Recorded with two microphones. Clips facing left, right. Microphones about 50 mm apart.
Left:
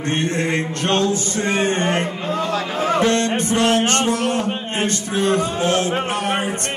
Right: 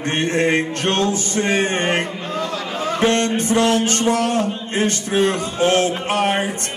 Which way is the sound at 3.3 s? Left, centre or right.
Left.